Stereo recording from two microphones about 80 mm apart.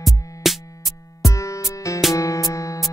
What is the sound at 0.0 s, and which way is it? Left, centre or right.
Music, centre.